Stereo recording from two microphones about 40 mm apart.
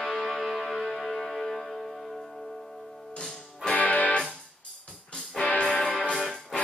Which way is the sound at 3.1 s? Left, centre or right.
Left.